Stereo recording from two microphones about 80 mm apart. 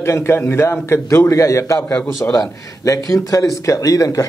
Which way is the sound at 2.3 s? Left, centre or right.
Left.